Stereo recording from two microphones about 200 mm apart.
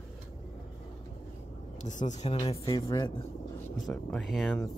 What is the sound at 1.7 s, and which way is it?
Speech, 35° left (ahead or behind).